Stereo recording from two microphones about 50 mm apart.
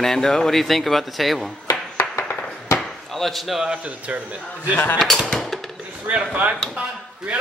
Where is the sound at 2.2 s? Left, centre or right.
Left.